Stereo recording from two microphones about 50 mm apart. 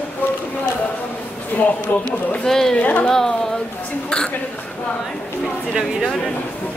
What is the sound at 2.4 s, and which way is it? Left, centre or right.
Speech, centre.